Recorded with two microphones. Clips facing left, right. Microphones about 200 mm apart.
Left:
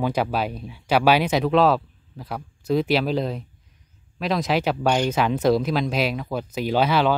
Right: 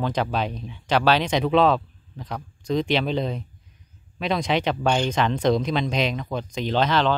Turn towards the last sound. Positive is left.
turn(degrees=10)  # may be behind; listen again after turning